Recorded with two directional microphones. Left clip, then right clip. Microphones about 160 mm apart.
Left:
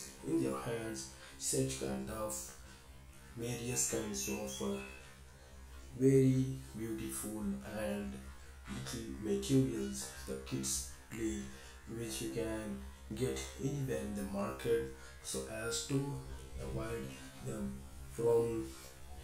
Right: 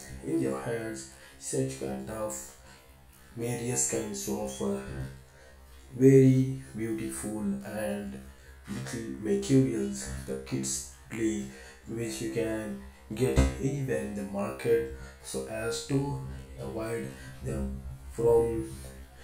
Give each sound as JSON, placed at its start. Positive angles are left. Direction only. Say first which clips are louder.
{"t": 0.4, "sound": "speech", "louder": "right 7 dB", "side_deg": -20}
{"t": 5.9, "sound": "speech", "louder": "right 9 dB", "side_deg": -30}